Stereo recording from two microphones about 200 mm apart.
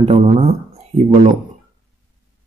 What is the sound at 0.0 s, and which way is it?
Speech, 30° right (ahead or behind).